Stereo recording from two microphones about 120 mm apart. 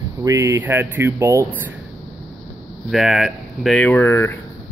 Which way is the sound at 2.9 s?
5° right (ahead or behind).